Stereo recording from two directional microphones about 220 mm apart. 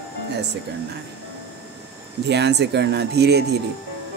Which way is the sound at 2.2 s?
50° right (ahead or behind).